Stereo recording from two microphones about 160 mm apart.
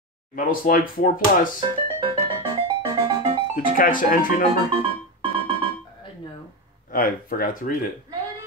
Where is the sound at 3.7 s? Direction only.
60° left (ahead or behind).